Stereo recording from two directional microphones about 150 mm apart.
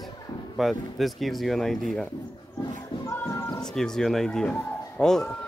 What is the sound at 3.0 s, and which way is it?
Music, 15° left (ahead or behind).